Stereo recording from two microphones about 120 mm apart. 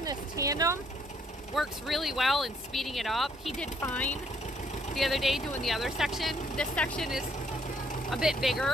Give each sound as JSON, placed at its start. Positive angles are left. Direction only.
{"t": 0.0, "sound": "vehicle", "side_deg": -30}
{"t": 1.5, "sound": "speech", "side_deg": 0}
{"t": 3.9, "sound": "speech", "side_deg": 15}
{"t": 4.9, "sound": "speech", "side_deg": 0}
{"t": 8.1, "sound": "speech", "side_deg": -5}